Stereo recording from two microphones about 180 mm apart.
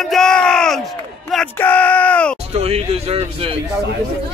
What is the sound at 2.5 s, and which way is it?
Speech, 35° right (ahead or behind).